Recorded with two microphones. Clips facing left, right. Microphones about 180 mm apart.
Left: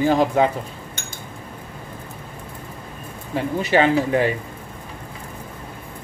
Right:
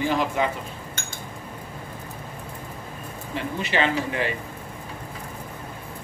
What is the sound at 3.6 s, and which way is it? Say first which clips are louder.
Speech: left 7 dB; 40° left (ahead or behind).